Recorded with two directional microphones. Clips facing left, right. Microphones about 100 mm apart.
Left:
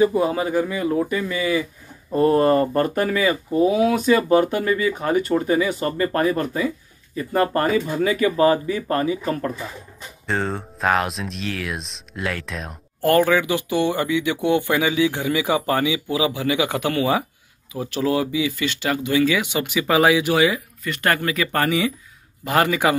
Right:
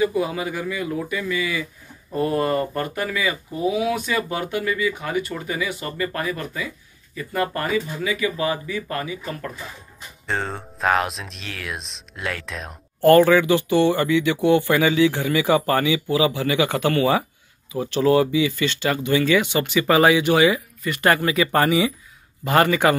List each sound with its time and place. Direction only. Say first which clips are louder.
0.0 s speech: left 4 dB; 35° left (ahead or behind)
10.2 s speech: left 2 dB; centre (ahead or behind)
22.4 s speech: right 1 dB; centre (ahead or behind)